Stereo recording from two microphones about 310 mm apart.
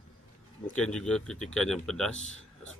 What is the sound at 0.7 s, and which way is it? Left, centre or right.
Speech, centre.